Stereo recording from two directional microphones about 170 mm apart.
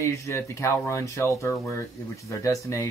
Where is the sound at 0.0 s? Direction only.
15° left (ahead or behind).